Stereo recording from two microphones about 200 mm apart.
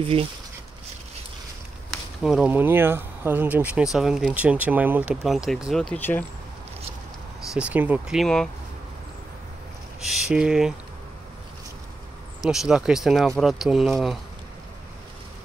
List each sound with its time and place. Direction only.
0.0 s speech: 25° right (ahead or behind)
2.2 s speech: 5° right (ahead or behind)
7.5 s speech: 5° right (ahead or behind)
10.0 s speech: 5° right (ahead or behind)
12.4 s speech: centre (ahead or behind)